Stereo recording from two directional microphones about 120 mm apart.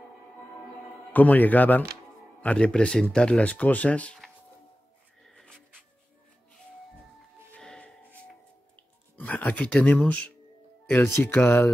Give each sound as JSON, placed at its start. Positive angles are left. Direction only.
{"t": 1.1, "sound": "speech", "side_deg": 15}
{"t": 5.2, "sound": "a sound", "side_deg": 5}
{"t": 7.5, "sound": "music", "side_deg": 10}
{"t": 11.1, "sound": "speech", "side_deg": 20}